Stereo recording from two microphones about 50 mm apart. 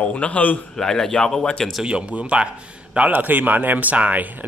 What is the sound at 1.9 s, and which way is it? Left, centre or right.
Speech, right.